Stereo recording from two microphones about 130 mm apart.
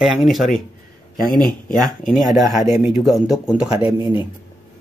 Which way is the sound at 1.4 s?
90° left.